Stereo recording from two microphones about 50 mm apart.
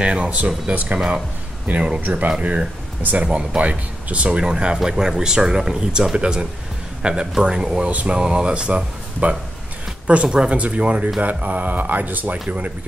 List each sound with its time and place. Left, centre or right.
0.0 s speech: right
0.9 s speech: centre
1.7 s speech: right
2.0 s speech: right; by 7.9 s centre
7.9 s speech: right